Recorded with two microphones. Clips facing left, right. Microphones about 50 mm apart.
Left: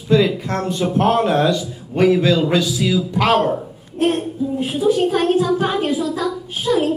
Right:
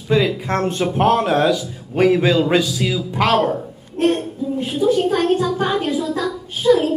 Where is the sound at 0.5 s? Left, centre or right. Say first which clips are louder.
Right 2 dB; right.